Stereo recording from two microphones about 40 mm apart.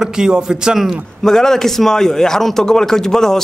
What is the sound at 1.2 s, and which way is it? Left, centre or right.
Speech, centre.